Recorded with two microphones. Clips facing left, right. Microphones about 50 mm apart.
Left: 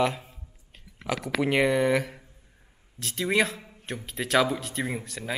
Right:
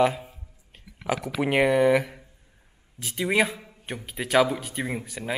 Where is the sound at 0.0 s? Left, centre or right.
Centre.